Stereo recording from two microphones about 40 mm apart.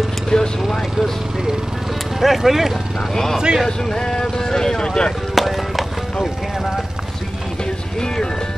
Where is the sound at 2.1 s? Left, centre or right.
Centre.